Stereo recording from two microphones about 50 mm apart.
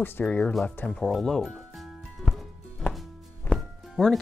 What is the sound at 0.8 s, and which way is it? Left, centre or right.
Speech, centre.